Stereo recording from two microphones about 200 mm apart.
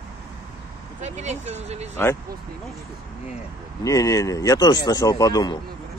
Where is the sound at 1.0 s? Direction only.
35° right (ahead or behind).